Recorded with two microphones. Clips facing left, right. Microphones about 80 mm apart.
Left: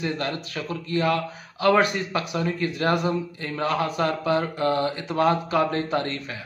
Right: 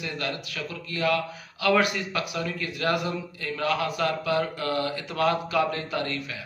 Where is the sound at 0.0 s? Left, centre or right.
Left.